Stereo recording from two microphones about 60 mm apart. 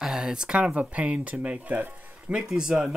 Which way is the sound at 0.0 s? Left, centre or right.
Centre.